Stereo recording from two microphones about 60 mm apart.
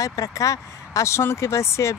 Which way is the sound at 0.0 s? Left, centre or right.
Left.